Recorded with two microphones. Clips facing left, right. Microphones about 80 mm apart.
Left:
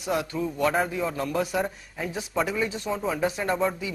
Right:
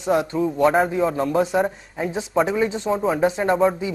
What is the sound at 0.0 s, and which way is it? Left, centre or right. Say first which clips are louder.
A man's voice: right 7 dB; right.